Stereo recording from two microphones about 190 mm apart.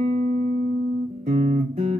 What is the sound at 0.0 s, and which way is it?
Music, 40° right (ahead or behind).